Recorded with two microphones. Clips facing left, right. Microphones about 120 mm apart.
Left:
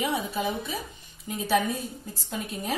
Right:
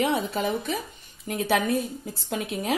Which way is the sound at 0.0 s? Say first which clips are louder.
Right 3 dB; 65° right (ahead or behind).